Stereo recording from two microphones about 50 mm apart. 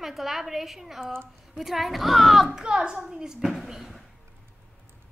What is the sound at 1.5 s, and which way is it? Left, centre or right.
Speech, centre.